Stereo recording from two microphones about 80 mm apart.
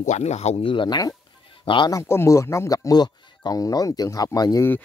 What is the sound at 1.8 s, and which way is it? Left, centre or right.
Speech, left.